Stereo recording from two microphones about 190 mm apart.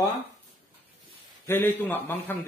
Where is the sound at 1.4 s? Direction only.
10° left (ahead or behind).